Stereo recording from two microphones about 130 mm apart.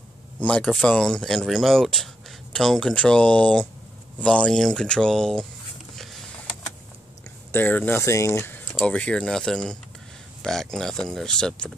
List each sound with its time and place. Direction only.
0.4 s speech: 10° left (ahead or behind)
7.5 s speech: 15° left (ahead or behind)